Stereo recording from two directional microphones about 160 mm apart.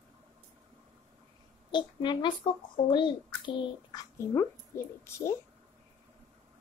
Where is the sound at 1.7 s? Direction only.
30° left (ahead or behind).